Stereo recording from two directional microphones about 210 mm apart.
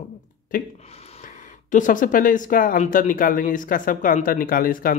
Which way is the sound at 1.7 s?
40° left (ahead or behind).